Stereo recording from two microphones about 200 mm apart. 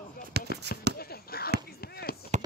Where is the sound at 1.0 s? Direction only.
50° left (ahead or behind).